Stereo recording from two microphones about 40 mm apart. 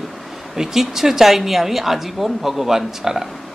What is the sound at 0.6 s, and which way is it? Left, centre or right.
A woman's voice, centre.